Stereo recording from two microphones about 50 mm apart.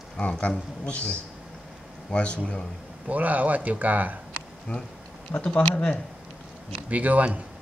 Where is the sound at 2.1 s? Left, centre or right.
Left.